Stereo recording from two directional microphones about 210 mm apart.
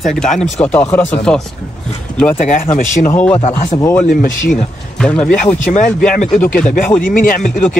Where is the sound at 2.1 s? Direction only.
5° left (ahead or behind).